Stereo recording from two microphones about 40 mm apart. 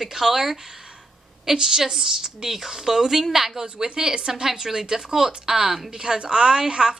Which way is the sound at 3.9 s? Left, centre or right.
Right.